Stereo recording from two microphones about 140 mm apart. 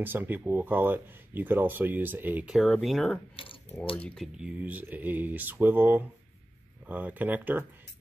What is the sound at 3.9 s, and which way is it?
Speech, 5° left (ahead or behind).